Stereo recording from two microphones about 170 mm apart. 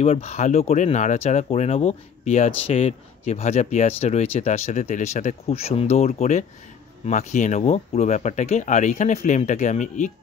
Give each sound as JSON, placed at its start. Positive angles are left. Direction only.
{"t": 0.0, "sound": "speech", "side_deg": 40}